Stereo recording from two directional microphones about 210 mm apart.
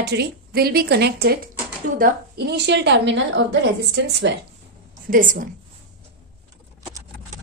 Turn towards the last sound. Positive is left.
turn(degrees=-40)  # may be behind; listen again after turning